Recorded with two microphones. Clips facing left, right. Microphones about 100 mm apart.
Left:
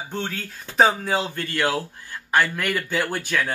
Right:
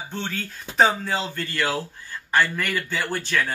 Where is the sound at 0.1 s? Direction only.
10° left (ahead or behind).